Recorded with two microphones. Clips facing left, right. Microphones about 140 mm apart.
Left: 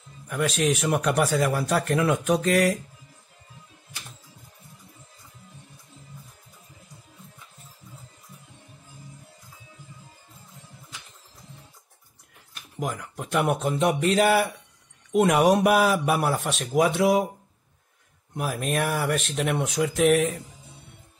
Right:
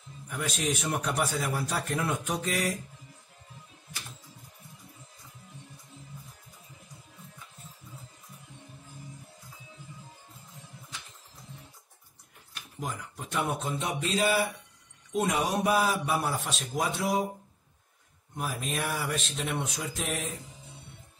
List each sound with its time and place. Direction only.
0.3 s speech: 75° left (ahead or behind)
12.7 s a sound: 75° left (ahead or behind)
15.1 s a man's voice: 70° left (ahead or behind)
18.3 s speech: 65° left (ahead or behind)